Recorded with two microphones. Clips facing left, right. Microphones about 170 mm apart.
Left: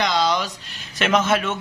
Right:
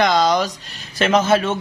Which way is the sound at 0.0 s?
45° right (ahead or behind).